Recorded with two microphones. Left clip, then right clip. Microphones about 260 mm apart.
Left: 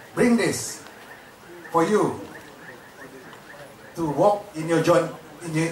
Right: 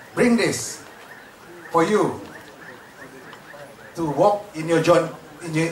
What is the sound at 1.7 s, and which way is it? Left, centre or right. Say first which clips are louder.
Speech: right 2 dB; left.